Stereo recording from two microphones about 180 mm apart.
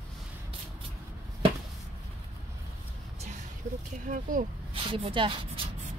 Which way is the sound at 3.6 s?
45° right (ahead or behind).